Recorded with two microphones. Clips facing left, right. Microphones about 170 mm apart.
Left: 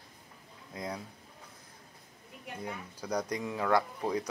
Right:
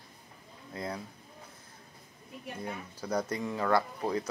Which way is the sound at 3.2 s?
15° left (ahead or behind).